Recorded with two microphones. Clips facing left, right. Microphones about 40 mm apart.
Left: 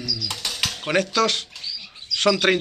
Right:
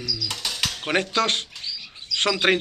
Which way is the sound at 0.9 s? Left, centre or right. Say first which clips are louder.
Left 2 dB; right.